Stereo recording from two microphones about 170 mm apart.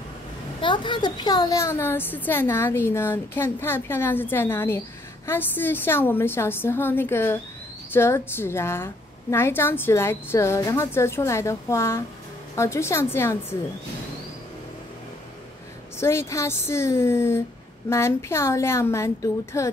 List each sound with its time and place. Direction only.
0.6 s a woman's voice: 25° left (ahead or behind)
16.0 s a woman's voice: 15° left (ahead or behind)